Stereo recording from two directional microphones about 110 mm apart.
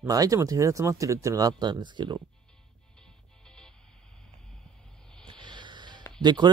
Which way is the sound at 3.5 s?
5° left (ahead or behind).